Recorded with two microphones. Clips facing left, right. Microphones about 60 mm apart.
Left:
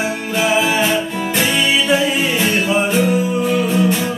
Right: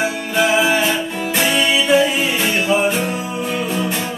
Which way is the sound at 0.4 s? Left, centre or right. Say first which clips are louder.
Right 1 dB; centre.